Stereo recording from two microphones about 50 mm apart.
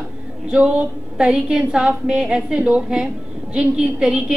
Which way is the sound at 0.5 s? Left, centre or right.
Centre.